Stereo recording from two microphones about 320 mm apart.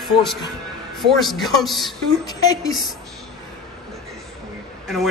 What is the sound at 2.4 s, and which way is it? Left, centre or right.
Speech, centre.